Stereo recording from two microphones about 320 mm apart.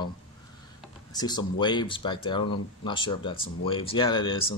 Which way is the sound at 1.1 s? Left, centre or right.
Centre.